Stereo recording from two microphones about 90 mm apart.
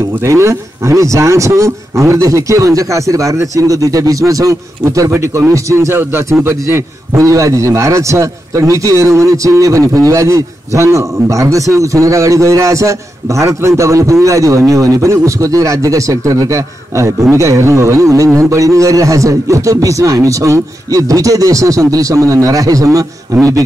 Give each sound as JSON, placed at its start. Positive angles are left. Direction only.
{"t": 0.2, "sound": "speech", "side_deg": -35}